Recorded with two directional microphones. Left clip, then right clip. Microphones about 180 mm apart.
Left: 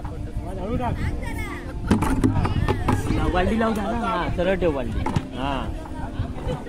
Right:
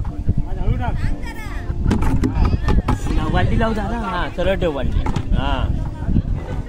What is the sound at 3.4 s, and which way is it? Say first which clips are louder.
Speech: right 2 dB; 60° right (ahead or behind).